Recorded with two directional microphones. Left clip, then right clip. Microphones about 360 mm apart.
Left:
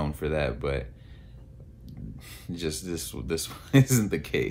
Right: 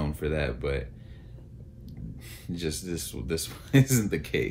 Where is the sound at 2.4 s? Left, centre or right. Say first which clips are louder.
Left 1 dB; centre.